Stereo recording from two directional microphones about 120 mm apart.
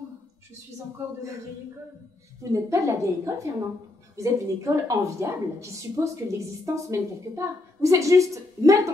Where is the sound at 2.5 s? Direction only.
25° right (ahead or behind).